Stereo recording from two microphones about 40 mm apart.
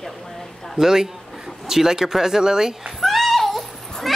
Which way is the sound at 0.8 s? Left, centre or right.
Centre.